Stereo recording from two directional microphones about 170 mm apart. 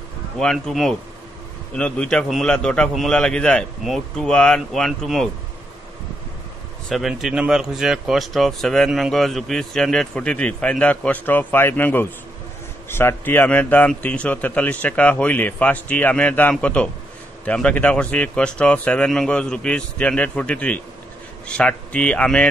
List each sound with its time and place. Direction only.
0.4 s speech: 5° left (ahead or behind)
6.9 s a man's voice: centre (ahead or behind)